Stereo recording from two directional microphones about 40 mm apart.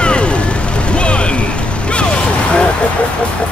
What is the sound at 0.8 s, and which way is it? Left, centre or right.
Music, left.